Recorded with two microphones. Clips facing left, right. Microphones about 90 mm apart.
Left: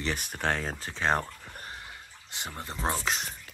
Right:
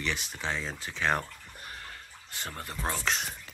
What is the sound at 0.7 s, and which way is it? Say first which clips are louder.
Speech: left 2 dB; 35° left (ahead or behind).